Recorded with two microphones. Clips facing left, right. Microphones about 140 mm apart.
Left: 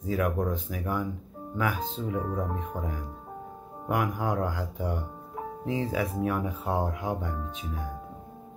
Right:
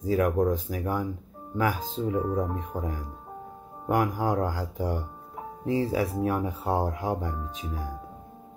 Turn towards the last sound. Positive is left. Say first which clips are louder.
# right 1 dB
turn(degrees=-35)  # may be behind; listen again after turning